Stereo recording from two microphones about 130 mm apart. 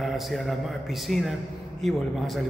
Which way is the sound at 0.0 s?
Centre (ahead or behind).